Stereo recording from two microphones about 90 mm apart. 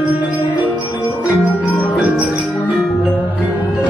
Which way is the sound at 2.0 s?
15° right (ahead or behind).